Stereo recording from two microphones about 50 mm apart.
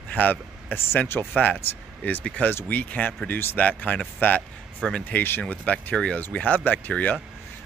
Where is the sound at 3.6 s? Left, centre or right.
Left.